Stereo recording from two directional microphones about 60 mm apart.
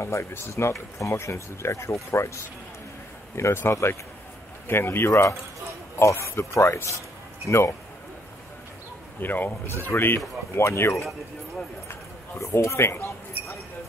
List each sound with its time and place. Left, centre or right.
0.0 s speech: left
3.3 s speech: left
3.7 s speech: left
4.6 s speech: left
9.2 s a man's voice: left
12.4 s speech: left